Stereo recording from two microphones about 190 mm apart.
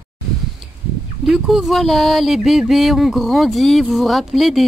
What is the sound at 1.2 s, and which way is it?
Speech, centre (ahead or behind).